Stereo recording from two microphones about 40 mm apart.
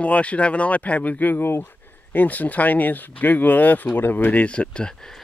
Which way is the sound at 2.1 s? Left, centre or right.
Left.